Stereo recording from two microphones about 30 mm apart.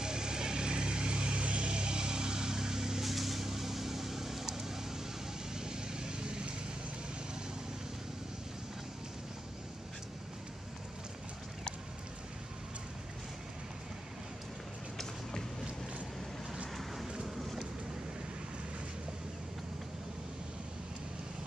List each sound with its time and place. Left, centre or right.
0.0 s vehicle: right
3.1 s vehicle: centre; by 6.5 s right
16.7 s vehicle: centre
17.1 s boat: right
17.4 s boat: centre